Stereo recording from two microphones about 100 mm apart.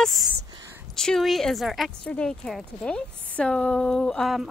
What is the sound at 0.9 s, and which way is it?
Speech, 5° left (ahead or behind).